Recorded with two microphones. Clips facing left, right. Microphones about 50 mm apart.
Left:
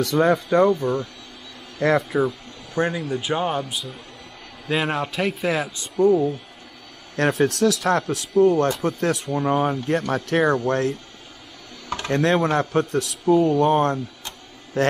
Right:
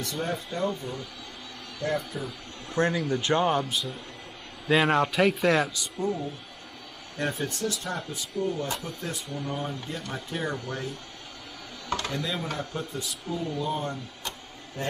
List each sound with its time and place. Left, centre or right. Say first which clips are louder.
0.0 s speech: left 12 dB; left
2.2 s a sound: left 10 dB; left
2.9 s speech: left 1 dB; centre
5.9 s speech: left 13 dB; left
7.2 s speech: left 11 dB; left
9.3 s speech: left 11 dB; left
12.1 s speech: left 12 dB; left
14.8 s speech: left 12 dB; left